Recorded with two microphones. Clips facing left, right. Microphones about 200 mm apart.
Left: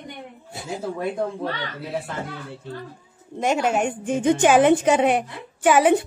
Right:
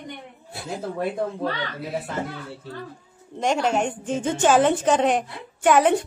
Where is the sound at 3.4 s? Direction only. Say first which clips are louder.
Left 1 dB; 5° left (ahead or behind).